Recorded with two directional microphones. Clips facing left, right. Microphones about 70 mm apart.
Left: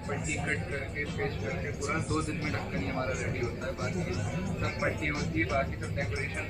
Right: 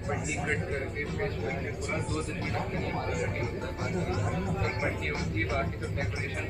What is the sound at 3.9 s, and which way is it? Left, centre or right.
Speech, right.